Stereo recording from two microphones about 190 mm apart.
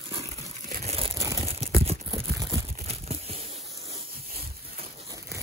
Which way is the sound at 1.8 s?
20° right (ahead or behind).